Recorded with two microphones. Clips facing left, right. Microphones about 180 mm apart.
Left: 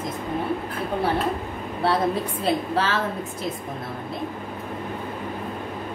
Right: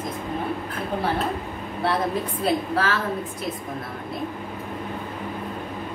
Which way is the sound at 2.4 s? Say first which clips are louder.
Even; 25° left (ahead or behind).